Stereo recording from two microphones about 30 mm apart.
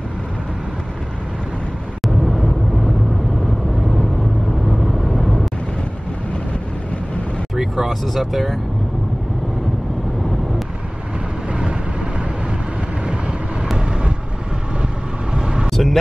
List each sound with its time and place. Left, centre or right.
2.0 s vehicle: centre
4.6 s vehicle: centre
7.5 s vehicle: centre
7.9 s speech: centre
13.0 s vehicle: right
15.3 s vehicle: right
15.7 s a sound: centre